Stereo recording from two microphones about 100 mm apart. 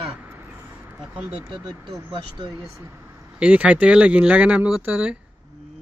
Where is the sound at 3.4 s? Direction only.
10° right (ahead or behind).